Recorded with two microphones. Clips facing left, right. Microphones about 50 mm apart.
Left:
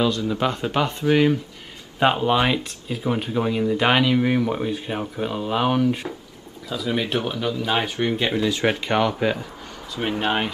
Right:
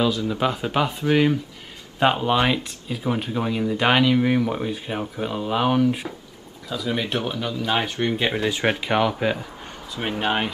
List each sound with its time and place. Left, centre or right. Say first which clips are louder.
0.0 s speech: even; centre
8.4 s speech: left 1 dB; centre
8.6 s speech: right 1 dB; centre